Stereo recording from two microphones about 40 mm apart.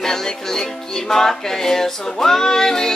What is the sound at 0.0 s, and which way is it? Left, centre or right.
Music, centre.